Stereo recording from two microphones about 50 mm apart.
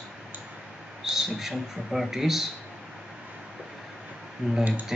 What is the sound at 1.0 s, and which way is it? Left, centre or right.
Speech, centre.